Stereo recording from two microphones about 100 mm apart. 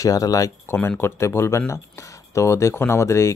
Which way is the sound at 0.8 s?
25° left (ahead or behind).